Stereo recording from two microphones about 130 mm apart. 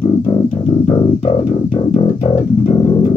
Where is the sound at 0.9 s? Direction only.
35° left (ahead or behind).